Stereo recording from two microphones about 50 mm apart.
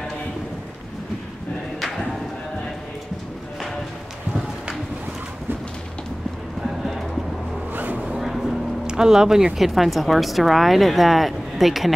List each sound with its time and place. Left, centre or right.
7.7 s a sound: right
8.1 s vehicle: centre
8.8 s a woman's voice: centre